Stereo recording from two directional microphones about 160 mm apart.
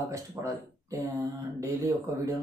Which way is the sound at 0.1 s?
20° right (ahead or behind).